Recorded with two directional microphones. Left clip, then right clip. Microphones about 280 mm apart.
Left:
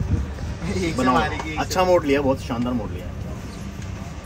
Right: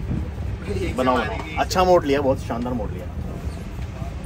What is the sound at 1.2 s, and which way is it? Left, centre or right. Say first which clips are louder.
Speech: left 1 dB; centre.